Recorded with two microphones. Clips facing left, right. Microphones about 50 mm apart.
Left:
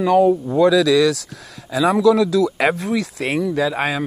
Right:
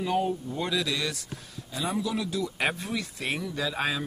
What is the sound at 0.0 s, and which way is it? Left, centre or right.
Speech, left.